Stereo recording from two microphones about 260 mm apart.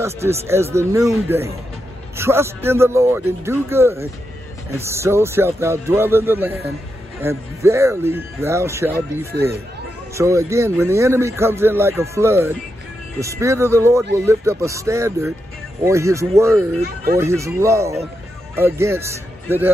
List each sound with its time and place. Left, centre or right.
0.0 s speech: centre
10.1 s speech: centre
16.8 s speech: right
17.2 s speech: centre